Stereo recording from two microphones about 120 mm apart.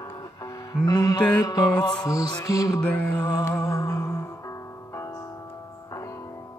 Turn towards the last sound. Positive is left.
turn(degrees=25)  # may be behind; listen again after turning